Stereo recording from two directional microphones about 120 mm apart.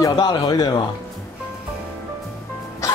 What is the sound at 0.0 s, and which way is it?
Speech, 30° left (ahead or behind).